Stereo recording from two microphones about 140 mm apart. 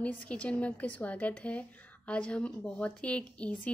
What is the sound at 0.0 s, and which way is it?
A woman's voice, 10° left (ahead or behind).